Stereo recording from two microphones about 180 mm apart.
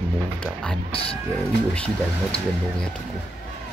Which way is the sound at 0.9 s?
30° left (ahead or behind).